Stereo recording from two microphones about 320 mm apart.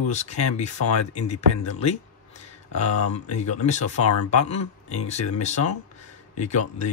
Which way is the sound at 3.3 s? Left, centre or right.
Left.